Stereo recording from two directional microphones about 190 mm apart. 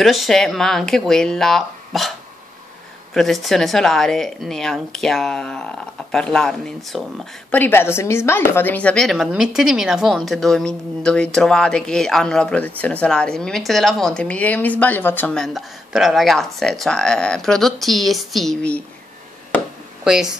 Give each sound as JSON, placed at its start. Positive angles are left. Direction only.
{"t": 0.0, "sound": "a woman's voice", "side_deg": 0}
{"t": 3.2, "sound": "a woman's voice", "side_deg": 0}
{"t": 20.1, "sound": "a woman's voice", "side_deg": -5}